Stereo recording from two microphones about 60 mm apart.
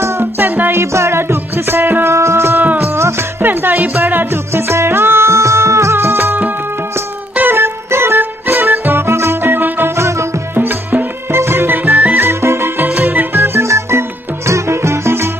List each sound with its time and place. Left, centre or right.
0.2 s music: right
2.0 s music: right
4.5 s music: right
7.5 s music: right
9.9 s music: right
10.5 s music: right
11.3 s music: right
11.9 s music: right
12.2 s music: right